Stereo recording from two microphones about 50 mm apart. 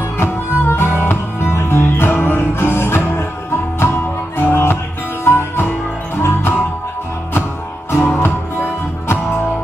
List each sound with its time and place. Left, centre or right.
0.2 s music: left
1.8 s music: left
8.2 s music: left